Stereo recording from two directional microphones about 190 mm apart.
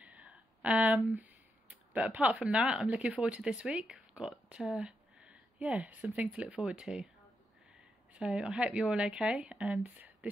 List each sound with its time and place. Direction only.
0.0 s a sound: 5° right (ahead or behind)
1.1 s speech: 10° right (ahead or behind)
8.1 s speech: 5° right (ahead or behind)